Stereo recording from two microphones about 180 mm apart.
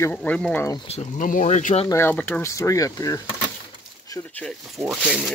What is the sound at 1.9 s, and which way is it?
Speech, 10° left (ahead or behind).